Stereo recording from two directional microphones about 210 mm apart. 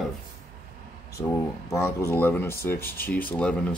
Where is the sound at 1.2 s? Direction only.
15° left (ahead or behind).